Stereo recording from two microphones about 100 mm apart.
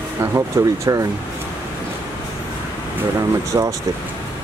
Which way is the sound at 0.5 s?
30° right (ahead or behind).